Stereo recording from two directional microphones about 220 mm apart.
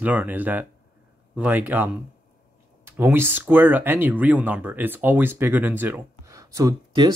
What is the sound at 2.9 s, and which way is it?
Speech, 10° right (ahead or behind).